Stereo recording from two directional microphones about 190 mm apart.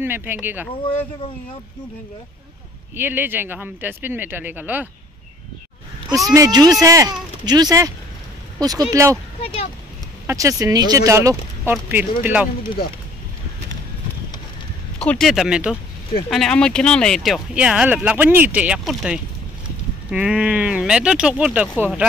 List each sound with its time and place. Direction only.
0.0 s speech: 10° right (ahead or behind)
3.0 s speech: 10° right (ahead or behind)
6.0 s speech: centre (ahead or behind)
6.3 s speech: 20° right (ahead or behind)
10.2 s speech: 15° right (ahead or behind)
15.0 s speech: 5° left (ahead or behind)